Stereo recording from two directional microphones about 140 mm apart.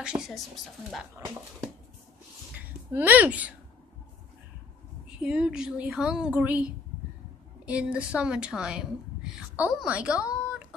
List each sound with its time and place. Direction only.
0.0 s speech: 5° right (ahead or behind)
1.2 s speech: 20° right (ahead or behind)
2.5 s speech: 10° right (ahead or behind)
5.2 s a woman's voice: 5° right (ahead or behind)